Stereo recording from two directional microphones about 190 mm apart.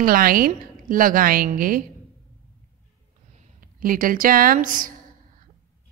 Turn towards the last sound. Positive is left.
turn(degrees=-45)  # may be behind; listen again after turning